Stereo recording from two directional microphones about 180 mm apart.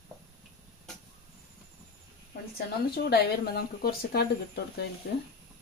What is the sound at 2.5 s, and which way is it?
Speech, 60° left (ahead or behind).